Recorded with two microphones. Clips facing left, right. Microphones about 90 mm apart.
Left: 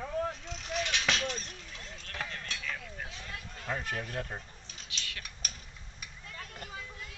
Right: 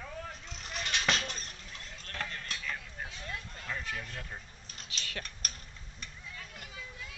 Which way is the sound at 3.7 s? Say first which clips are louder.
Left 4 dB; 40° left (ahead or behind).